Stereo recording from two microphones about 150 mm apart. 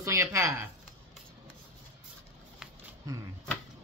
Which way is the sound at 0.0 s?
20° right (ahead or behind).